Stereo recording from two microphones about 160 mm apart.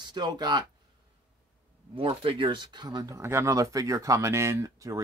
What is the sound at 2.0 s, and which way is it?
Speech, 35° right (ahead or behind).